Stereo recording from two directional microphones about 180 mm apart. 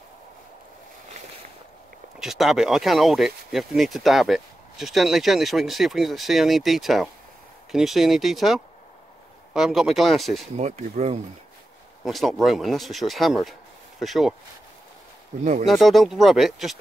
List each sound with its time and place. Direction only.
2.1 s speech: centre (ahead or behind)
10.6 s speech: 40° right (ahead or behind)
12.0 s speech: centre (ahead or behind)
15.6 s speech: centre (ahead or behind)